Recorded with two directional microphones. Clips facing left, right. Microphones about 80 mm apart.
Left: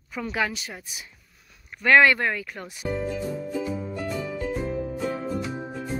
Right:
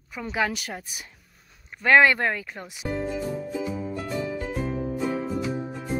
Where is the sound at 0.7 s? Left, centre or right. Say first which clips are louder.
Right 3 dB; right.